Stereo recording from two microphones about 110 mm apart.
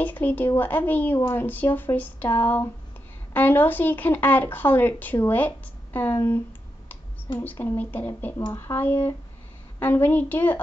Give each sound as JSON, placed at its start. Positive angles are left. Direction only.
{"t": 0.0, "sound": "speech", "side_deg": 15}